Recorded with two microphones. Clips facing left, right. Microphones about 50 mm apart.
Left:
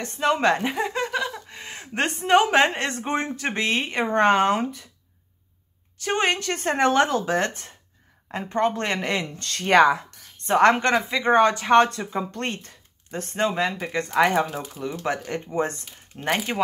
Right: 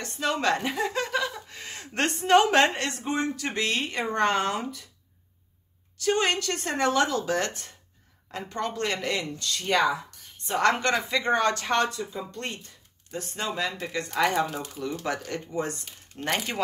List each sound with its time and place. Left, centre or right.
0.0 s a woman's voice: left
2.9 s speech: left
5.9 s speech: left
10.6 s speech: left
11.9 s speech: left
14.4 s speech: centre
14.8 s speech: centre; by 15.8 s left
16.2 s speech: centre